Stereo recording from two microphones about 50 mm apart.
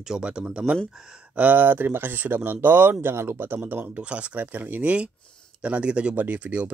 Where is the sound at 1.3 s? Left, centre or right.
Right.